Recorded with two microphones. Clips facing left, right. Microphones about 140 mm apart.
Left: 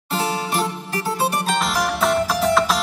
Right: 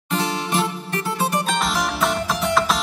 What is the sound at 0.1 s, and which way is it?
Music, 30° left (ahead or behind).